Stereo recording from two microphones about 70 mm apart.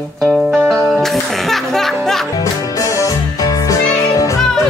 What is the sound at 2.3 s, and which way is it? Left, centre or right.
Music, left.